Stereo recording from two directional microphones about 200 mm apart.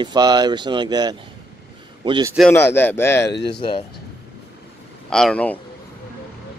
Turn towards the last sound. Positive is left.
turn(degrees=5)  # may be behind; listen again after turning